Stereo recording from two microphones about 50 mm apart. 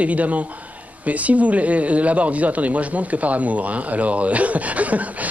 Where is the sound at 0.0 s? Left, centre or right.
Right.